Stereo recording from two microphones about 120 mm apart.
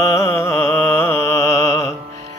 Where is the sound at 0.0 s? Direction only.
25° left (ahead or behind).